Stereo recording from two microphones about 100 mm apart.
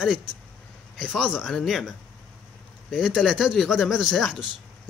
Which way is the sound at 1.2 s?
10° right (ahead or behind).